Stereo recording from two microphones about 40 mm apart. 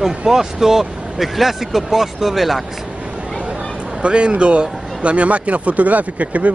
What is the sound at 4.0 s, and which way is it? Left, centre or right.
A man's voice, right.